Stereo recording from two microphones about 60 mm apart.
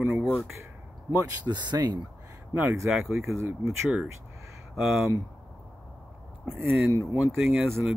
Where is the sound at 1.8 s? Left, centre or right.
Right.